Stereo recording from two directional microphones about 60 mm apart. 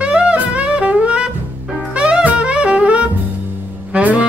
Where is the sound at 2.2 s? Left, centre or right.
Centre.